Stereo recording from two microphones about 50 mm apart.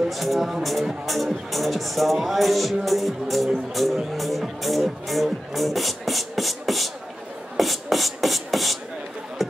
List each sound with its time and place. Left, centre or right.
0.1 s speech: centre
7.5 s music: centre
9.4 s a sound: centre